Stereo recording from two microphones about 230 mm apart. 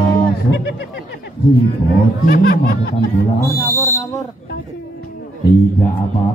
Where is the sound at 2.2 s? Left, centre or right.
Left.